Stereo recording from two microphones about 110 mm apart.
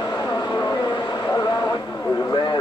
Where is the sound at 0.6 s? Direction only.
35° left (ahead or behind).